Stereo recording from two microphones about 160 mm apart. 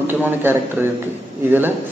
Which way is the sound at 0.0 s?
15° right (ahead or behind).